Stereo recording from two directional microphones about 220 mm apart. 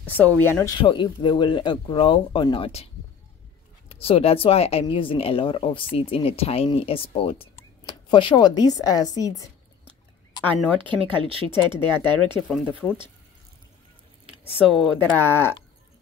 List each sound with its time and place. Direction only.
0.0 s speech: 5° left (ahead or behind)
0.7 s speech: 20° left (ahead or behind)
3.9 s speech: 25° left (ahead or behind)
10.8 s speech: 20° right (ahead or behind)
12.4 s speech: 5° right (ahead or behind)
14.7 s speech: 5° left (ahead or behind)